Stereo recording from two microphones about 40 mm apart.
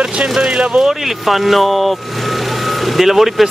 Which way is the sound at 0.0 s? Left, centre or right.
Right.